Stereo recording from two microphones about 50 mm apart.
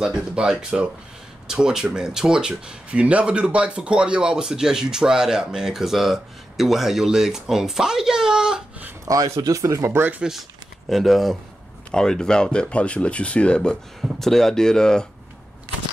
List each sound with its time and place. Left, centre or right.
0.0 s speech: centre
9.3 s speech: right
10.9 s speech: centre
11.9 s speech: centre
14.2 s speech: centre